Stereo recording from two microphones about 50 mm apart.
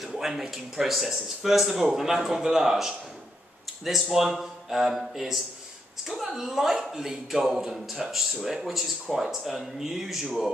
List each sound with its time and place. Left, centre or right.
0.0 s a man's voice: centre